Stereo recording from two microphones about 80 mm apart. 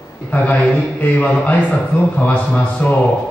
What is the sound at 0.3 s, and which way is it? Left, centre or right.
A man's voice, centre.